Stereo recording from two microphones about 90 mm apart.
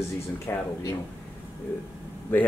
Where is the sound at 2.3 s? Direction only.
20° left (ahead or behind).